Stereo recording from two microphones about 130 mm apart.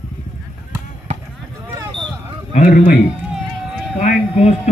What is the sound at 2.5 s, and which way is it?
Speech, 90° left.